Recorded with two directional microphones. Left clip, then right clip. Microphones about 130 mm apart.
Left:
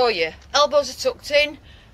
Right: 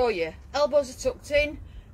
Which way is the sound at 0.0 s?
20° right (ahead or behind).